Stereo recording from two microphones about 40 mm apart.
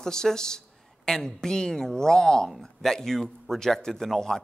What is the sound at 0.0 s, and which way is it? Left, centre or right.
Speech, centre.